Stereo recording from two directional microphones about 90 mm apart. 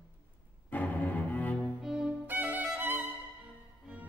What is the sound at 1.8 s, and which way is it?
Music, 5° right (ahead or behind).